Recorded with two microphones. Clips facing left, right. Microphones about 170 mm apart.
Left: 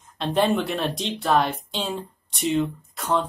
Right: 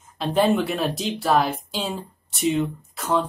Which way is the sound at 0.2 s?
Centre (ahead or behind).